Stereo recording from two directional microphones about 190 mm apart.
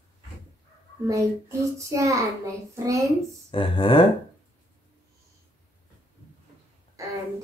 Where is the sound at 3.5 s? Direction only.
25° left (ahead or behind).